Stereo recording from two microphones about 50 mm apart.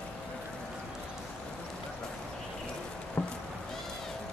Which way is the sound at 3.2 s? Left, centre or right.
Left.